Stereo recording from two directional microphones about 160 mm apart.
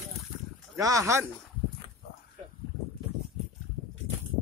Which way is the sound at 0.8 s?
20° right (ahead or behind).